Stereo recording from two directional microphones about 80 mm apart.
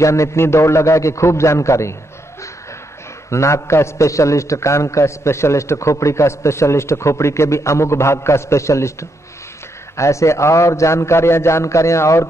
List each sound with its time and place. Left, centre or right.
0.0 s a man's voice: left
3.3 s a man's voice: left
9.9 s a man's voice: left